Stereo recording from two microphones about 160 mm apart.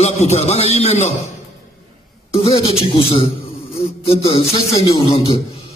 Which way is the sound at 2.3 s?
40° left (ahead or behind).